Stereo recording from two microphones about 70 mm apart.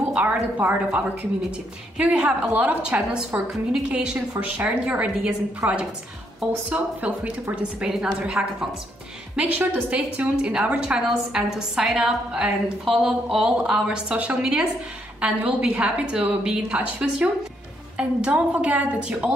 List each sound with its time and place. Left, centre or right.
0.1 s a woman's voice: right
5.6 s a woman's voice: right
6.7 s a woman's voice: centre
11.1 s a woman's voice: centre